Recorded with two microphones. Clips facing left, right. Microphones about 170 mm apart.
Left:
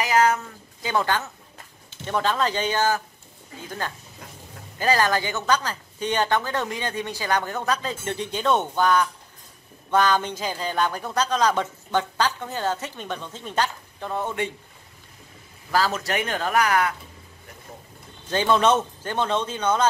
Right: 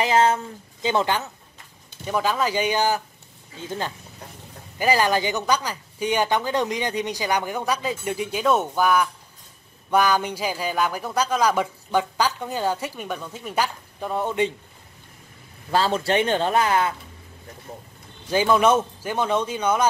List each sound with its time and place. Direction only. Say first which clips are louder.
0.0 s speech: right 1 dB; 25° right (ahead or behind)
2.0 s speech: right 1 dB; 5° right (ahead or behind)
15.7 s speech: right 3 dB; 25° right (ahead or behind)
18.2 s speech: right 2 dB; 10° right (ahead or behind)